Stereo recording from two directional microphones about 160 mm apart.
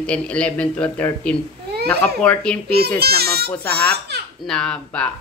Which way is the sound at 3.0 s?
75° right (ahead or behind).